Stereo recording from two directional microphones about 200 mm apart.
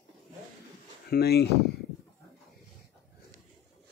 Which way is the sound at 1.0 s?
50° left (ahead or behind).